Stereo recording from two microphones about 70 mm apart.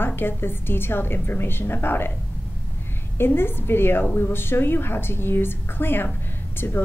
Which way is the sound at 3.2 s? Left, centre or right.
Left.